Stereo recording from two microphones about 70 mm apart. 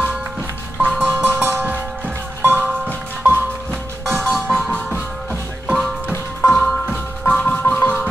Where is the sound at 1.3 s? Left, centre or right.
Right.